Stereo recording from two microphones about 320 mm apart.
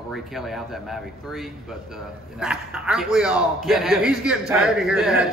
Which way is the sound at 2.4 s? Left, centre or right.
Centre.